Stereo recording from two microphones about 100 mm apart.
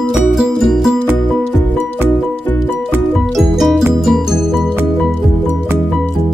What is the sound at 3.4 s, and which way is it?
Music, 5° right (ahead or behind).